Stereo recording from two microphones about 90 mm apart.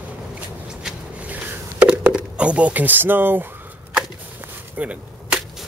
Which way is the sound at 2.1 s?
15° right (ahead or behind).